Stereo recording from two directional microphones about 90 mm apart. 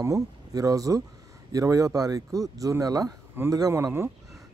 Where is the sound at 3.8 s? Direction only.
25° right (ahead or behind).